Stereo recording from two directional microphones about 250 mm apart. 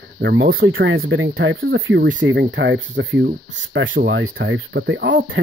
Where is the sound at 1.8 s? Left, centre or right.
Right.